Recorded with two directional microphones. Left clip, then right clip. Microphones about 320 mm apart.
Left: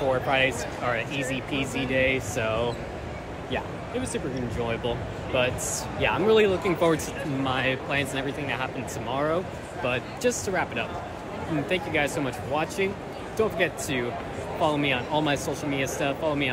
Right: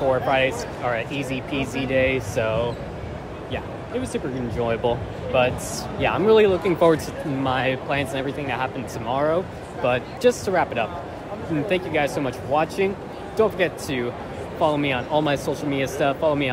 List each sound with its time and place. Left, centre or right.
0.1 s speech: centre